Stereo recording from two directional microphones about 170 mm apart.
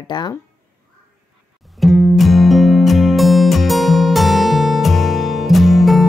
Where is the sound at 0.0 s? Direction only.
25° left (ahead or behind).